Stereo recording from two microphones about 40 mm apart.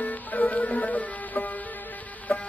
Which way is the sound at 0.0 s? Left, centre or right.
Left.